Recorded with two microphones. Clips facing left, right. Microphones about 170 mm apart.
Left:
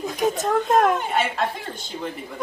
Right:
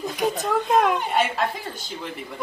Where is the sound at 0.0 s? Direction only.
Centre (ahead or behind).